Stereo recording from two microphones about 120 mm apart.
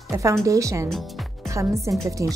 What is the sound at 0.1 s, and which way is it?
Speech, 25° right (ahead or behind).